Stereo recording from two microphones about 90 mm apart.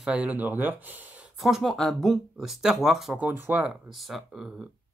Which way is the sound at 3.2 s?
20° right (ahead or behind).